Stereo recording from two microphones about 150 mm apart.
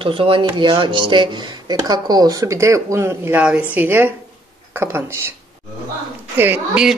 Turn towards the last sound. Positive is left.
turn(degrees=-5)  # may be behind; listen again after turning